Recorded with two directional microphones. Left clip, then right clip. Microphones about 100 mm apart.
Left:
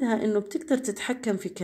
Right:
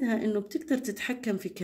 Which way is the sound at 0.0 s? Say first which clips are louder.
Left 4 dB; 20° left (ahead or behind).